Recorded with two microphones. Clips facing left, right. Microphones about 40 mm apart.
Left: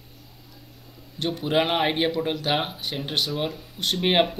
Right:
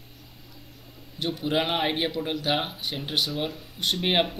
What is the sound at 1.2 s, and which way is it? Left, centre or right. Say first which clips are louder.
Speech: left 3 dB; centre.